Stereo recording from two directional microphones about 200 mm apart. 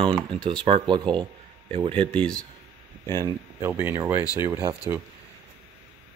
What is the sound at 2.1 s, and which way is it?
Speech, 5° left (ahead or behind).